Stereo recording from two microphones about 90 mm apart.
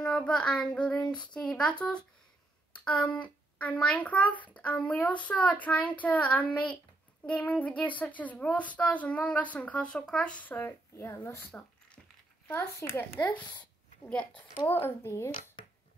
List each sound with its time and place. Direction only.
0.0 s a child's voice: 10° left (ahead or behind)
11.0 s speech: 30° left (ahead or behind)
13.3 s speech: 15° left (ahead or behind)
14.7 s speech: 25° left (ahead or behind)